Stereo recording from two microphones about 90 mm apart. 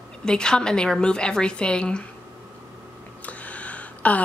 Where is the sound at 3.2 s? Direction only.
15° left (ahead or behind).